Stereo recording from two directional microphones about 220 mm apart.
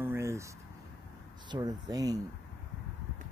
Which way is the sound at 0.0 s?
10° right (ahead or behind).